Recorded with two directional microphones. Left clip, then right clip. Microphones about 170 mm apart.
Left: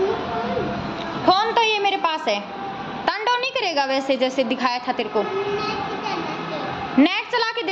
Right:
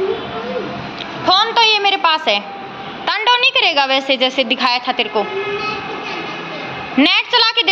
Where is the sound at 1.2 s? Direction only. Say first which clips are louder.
Right 5 dB; 25° left (ahead or behind); by 2.4 s centre (ahead or behind).